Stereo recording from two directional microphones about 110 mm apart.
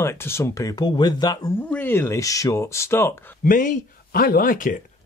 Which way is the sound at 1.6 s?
15° left (ahead or behind).